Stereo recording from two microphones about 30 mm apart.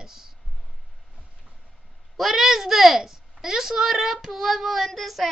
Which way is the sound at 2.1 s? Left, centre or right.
Centre.